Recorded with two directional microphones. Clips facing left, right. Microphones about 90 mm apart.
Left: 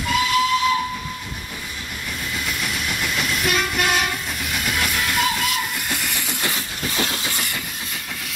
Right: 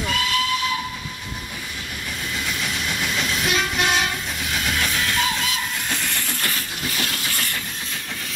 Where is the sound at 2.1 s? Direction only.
Centre (ahead or behind).